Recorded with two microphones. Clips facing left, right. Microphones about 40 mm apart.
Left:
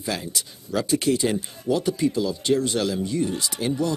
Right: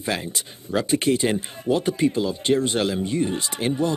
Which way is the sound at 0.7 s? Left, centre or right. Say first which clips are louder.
Right 1 dB; right.